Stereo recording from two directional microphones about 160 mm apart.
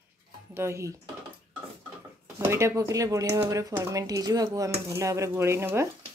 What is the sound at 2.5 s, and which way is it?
Speech, 15° right (ahead or behind).